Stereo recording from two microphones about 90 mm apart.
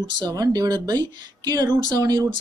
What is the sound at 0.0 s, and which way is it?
Speech, 50° right (ahead or behind).